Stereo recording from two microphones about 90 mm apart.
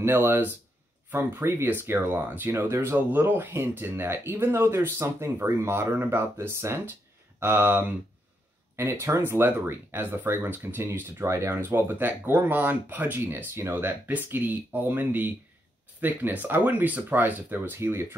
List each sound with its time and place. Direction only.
0.0 s speech: 25° right (ahead or behind)